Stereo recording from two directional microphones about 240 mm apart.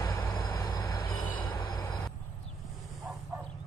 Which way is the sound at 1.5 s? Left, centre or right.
Centre.